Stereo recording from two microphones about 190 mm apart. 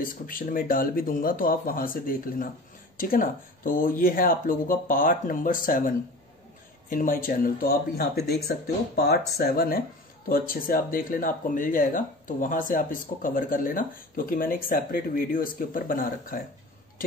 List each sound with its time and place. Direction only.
0.0 s speech: 45° left (ahead or behind)